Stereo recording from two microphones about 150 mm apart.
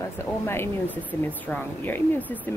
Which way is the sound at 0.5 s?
15° left (ahead or behind).